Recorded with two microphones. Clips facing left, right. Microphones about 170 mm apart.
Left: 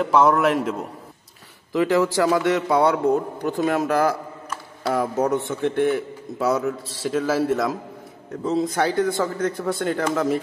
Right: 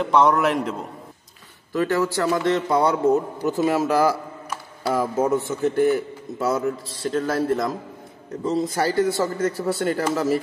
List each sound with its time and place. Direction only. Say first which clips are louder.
0.0 s speech: left 1 dB; 5° left (ahead or behind)
1.8 s speech: left 3 dB; 15° left (ahead or behind); by 10.4 s 5° right (ahead or behind)